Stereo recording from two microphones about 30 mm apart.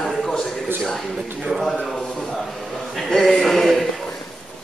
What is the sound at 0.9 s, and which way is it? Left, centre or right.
A man's voice, centre.